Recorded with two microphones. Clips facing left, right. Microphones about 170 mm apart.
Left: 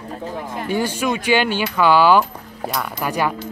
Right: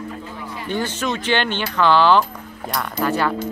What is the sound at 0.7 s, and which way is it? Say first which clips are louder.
Speech: left 2 dB; 10° left (ahead or behind).